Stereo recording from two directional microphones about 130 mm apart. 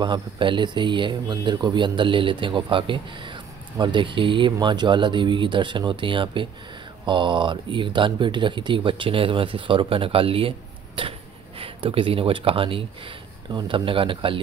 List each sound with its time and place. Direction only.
0.0 s speech: 35° right (ahead or behind)